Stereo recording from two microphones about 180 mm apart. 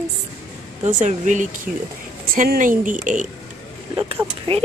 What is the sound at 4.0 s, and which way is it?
Speech, 30° right (ahead or behind).